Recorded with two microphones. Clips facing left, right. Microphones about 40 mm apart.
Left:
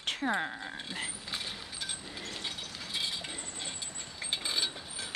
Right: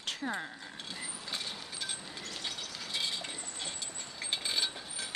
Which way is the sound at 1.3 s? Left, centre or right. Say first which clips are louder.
Left 1 dB; centre.